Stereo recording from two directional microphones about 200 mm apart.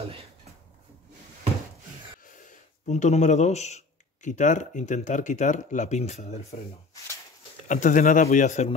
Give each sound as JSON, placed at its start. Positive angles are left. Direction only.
{"t": 0.0, "sound": "a sound", "side_deg": -30}
{"t": 2.2, "sound": "speech", "side_deg": 40}
{"t": 7.6, "sound": "speech", "side_deg": 40}